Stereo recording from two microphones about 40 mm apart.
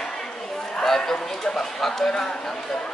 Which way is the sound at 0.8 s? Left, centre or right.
Centre.